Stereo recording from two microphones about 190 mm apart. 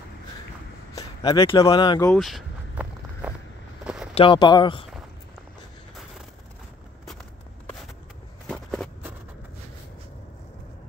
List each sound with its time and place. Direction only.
0.9 s speech: 20° left (ahead or behind)
2.0 s walk: centre (ahead or behind)
3.8 s a sound: 5° right (ahead or behind)
4.1 s speech: 25° left (ahead or behind)
8.5 s walk: 5° left (ahead or behind)